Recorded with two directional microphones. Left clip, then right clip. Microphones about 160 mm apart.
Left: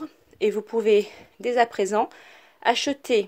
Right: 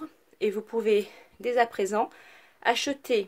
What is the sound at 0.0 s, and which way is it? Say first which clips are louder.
Speech: left 5 dB; 35° left (ahead or behind).